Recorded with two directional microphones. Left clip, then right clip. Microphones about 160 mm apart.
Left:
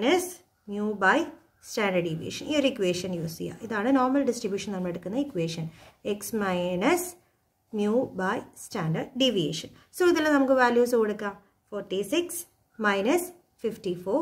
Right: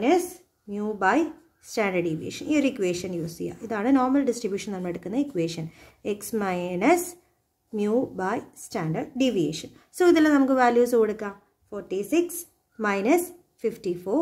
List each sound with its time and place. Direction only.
0.0 s a woman's voice: 15° right (ahead or behind)